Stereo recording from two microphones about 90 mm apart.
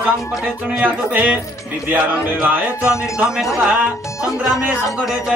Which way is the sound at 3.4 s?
5° right (ahead or behind).